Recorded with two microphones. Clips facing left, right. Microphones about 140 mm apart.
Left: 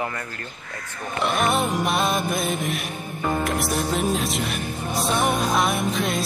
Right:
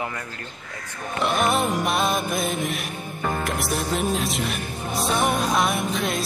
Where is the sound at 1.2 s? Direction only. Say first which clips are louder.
Even; centre (ahead or behind).